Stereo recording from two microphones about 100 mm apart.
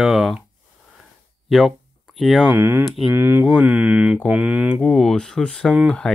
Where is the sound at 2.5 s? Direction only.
25° right (ahead or behind).